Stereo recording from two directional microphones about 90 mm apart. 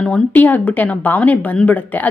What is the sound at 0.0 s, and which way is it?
Speech, 15° left (ahead or behind).